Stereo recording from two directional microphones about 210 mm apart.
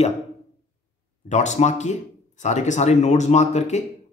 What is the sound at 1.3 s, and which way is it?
Speech, 35° left (ahead or behind).